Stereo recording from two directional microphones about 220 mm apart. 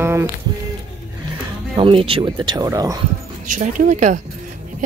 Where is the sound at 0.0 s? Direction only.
10° right (ahead or behind).